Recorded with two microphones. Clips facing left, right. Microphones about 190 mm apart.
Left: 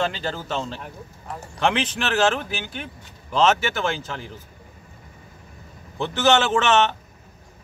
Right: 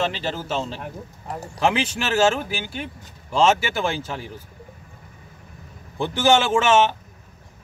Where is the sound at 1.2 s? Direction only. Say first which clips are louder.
Right 3 dB; 35° right (ahead or behind).